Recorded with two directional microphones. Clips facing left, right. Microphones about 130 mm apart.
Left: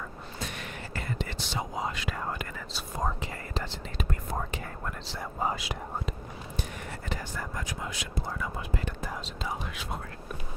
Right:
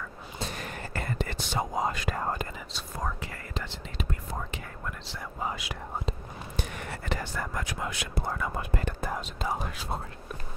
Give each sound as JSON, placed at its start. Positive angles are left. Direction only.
{"t": 0.4, "sound": "whispering", "side_deg": -35}
{"t": 3.0, "sound": "whispering", "side_deg": 30}
{"t": 4.3, "sound": "whispering", "side_deg": 45}
{"t": 6.5, "sound": "speech", "side_deg": -75}